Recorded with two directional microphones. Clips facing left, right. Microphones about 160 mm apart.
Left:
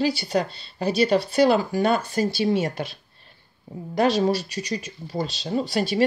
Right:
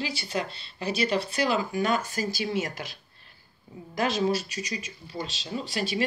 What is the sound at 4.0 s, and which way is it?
Speech, 35° left (ahead or behind).